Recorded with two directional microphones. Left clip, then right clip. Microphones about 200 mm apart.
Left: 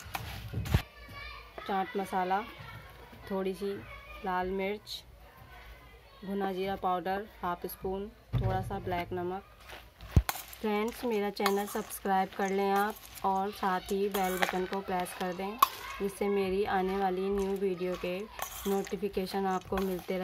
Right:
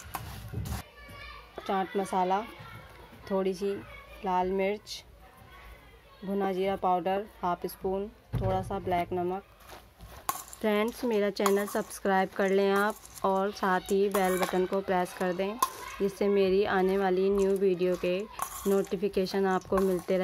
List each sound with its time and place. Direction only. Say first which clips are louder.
1.7 s speech: right 3 dB; 25° right (ahead or behind)
6.6 s speech: right 5 dB; 30° right (ahead or behind)
10.6 s speech: right 4 dB; 40° right (ahead or behind)